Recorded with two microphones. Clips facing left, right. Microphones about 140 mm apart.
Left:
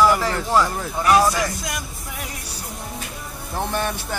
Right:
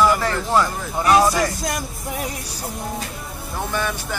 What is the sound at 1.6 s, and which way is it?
Speech, 40° right (ahead or behind).